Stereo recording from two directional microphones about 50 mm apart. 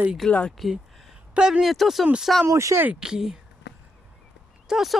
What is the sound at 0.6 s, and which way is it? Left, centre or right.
Speech, centre.